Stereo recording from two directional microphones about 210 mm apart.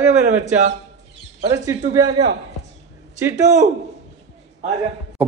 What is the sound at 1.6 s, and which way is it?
Speech, 15° right (ahead or behind).